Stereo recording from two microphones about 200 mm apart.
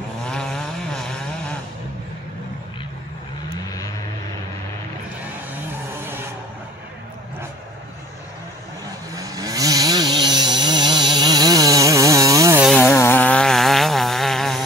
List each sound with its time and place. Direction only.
0.2 s chainsaw: 5° left (ahead or behind)
9.1 s chainsaw: 15° right (ahead or behind)
12.6 s chainsaw: centre (ahead or behind)
12.9 s a sound: 10° left (ahead or behind)